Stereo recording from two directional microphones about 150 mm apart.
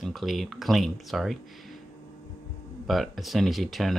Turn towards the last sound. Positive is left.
turn(degrees=0)  # may be behind; listen again after turning